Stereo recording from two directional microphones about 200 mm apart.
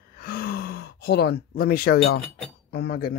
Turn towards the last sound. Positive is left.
turn(degrees=50)  # may be behind; listen again after turning